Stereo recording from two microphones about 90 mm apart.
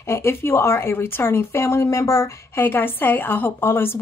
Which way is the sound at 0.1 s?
30° left (ahead or behind).